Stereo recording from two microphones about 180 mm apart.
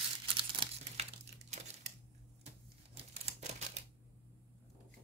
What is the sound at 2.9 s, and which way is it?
Typewriter, 35° right (ahead or behind).